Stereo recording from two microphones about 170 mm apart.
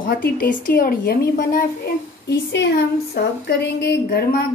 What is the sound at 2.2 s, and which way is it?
Speech, 90° left.